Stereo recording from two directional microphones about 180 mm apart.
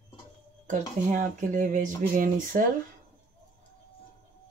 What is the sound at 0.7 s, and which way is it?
Speech, 45° right (ahead or behind).